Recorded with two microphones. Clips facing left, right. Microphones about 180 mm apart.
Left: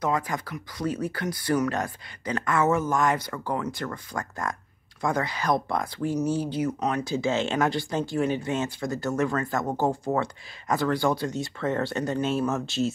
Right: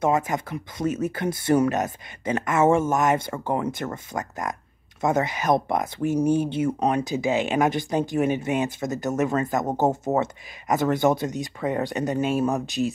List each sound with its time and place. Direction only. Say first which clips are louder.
0.0 s speech: right 4 dB; 25° right (ahead or behind)